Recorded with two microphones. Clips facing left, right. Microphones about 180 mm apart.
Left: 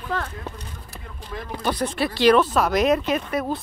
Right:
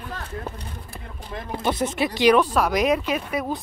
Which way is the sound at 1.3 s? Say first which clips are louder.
Right 1 dB; 20° right (ahead or behind).